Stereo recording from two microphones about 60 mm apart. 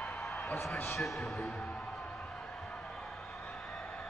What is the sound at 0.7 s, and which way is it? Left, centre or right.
Speech, left.